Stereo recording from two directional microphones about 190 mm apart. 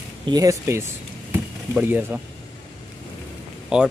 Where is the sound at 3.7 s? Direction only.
5° right (ahead or behind).